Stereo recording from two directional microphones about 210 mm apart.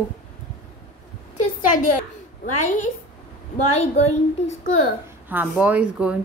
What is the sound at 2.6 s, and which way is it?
Speech, 35° left (ahead or behind).